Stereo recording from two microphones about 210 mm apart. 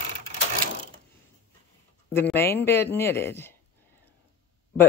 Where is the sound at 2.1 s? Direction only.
10° left (ahead or behind).